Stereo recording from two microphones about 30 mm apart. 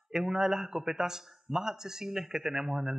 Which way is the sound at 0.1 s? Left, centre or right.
Centre.